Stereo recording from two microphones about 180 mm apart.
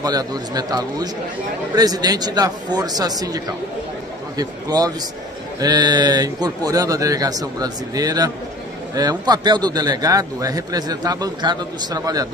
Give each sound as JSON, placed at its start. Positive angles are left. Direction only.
{"t": 0.0, "sound": "speech", "side_deg": -20}